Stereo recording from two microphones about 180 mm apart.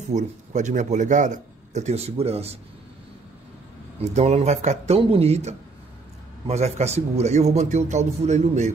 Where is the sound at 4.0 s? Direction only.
35° right (ahead or behind).